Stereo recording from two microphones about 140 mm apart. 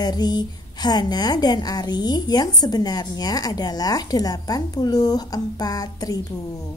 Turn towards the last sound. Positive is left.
turn(degrees=25)  # may be behind; listen again after turning